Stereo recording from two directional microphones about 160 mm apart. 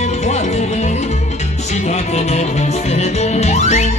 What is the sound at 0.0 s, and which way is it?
Music, 45° left (ahead or behind).